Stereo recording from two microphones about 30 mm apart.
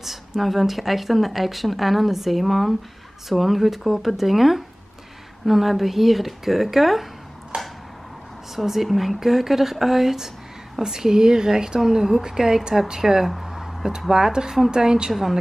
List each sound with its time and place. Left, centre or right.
0.0 s speech: centre
7.5 s a sound: right
8.8 s speech: centre
10.8 s speech: centre
11.8 s speech: centre
13.5 s a sound: centre
14.1 s speech: right